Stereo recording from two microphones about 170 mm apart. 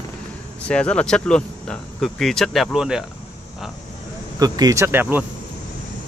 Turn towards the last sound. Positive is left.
turn(degrees=-10)  # may be behind; listen again after turning